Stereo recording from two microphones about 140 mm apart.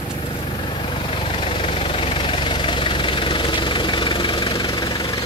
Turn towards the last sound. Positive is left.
turn(degrees=35)  # may be behind; listen again after turning